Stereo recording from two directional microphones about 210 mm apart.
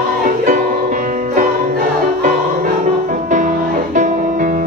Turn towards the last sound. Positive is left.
turn(degrees=-40)  # may be behind; listen again after turning